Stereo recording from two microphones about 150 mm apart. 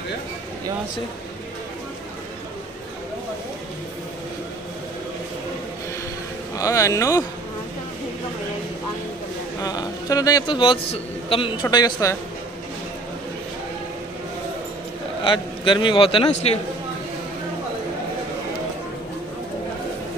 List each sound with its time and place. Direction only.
6.5 s speech: 20° left (ahead or behind)
9.6 s a man's voice: 25° left (ahead or behind)
11.7 s speech: 25° left (ahead or behind)
15.2 s a man's voice: 35° left (ahead or behind)